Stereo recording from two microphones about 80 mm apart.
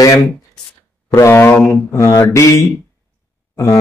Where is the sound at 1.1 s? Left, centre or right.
Left.